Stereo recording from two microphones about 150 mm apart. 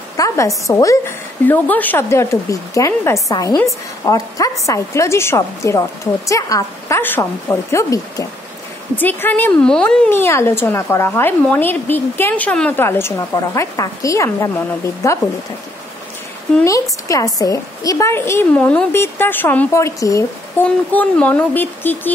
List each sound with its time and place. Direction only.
0.2 s a sound: 25° left (ahead or behind)
0.7 s a woman's voice: 20° left (ahead or behind)
17.1 s a woman's voice: 25° left (ahead or behind)